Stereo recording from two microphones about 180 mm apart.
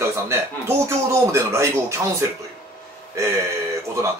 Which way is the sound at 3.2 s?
15° right (ahead or behind).